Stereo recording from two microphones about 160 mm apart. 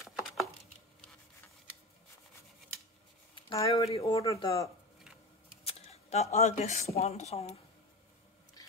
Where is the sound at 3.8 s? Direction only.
20° left (ahead or behind).